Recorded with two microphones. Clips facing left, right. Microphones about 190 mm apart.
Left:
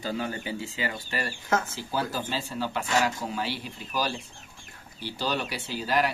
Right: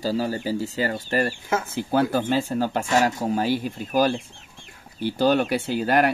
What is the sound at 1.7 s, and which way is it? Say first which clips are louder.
Speech: right 9 dB; 60° right (ahead or behind).